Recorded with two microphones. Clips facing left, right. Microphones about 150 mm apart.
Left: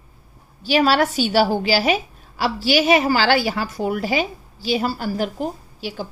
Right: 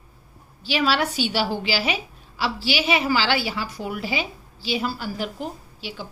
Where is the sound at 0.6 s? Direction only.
45° left (ahead or behind).